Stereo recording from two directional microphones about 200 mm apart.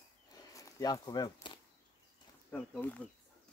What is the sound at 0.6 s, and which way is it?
Speech, 15° left (ahead or behind).